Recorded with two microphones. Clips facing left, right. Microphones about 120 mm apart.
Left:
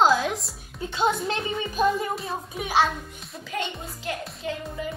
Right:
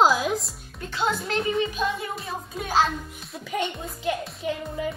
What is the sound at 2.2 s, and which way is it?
Speech, centre (ahead or behind).